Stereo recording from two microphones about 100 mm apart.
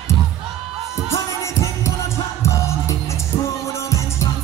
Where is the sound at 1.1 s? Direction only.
30° left (ahead or behind).